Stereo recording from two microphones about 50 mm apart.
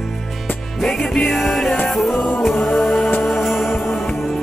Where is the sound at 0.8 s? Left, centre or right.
Centre.